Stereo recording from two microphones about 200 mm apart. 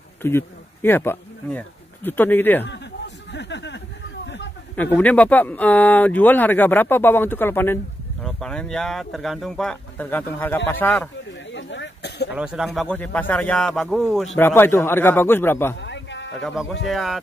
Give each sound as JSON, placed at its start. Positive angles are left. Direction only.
{"t": 0.2, "sound": "speech", "side_deg": 10}
{"t": 3.3, "sound": "a sound", "side_deg": 60}
{"t": 4.9, "sound": "speech", "side_deg": 5}
{"t": 11.5, "sound": "throat clearing", "side_deg": 60}
{"t": 12.3, "sound": "a man's voice", "side_deg": -5}
{"t": 15.8, "sound": "a sound", "side_deg": 60}
{"t": 16.9, "sound": "a man's voice", "side_deg": 0}